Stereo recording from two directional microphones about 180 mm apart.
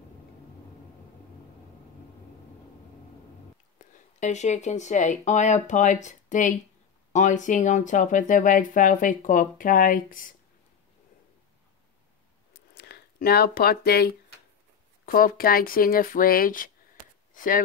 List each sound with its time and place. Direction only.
3.7 s speech: 45° left (ahead or behind)
12.7 s speech: 60° left (ahead or behind)